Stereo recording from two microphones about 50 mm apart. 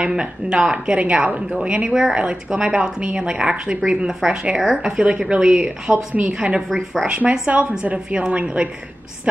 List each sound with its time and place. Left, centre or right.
0.0 s a woman's voice: centre
5.0 s a woman's voice: right